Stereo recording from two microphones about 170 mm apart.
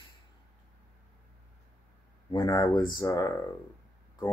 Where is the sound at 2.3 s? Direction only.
20° left (ahead or behind).